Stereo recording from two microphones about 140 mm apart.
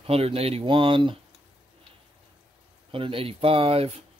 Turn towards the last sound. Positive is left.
turn(degrees=-45)  # may be behind; listen again after turning